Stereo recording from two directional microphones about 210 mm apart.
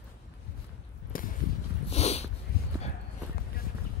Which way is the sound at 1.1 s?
40° left (ahead or behind).